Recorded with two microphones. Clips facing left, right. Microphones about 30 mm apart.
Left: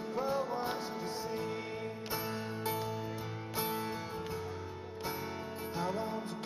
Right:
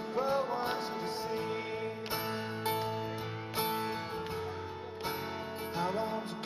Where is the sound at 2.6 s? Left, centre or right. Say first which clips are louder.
Right 4 dB; right.